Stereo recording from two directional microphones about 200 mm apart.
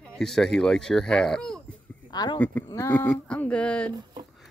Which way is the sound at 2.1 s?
20° left (ahead or behind).